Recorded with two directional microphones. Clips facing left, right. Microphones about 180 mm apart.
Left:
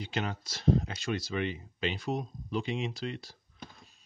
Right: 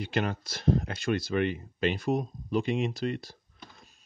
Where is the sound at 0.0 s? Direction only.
55° right (ahead or behind).